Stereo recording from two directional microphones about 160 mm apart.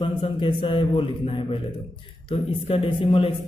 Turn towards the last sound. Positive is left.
turn(degrees=35)  # may be behind; listen again after turning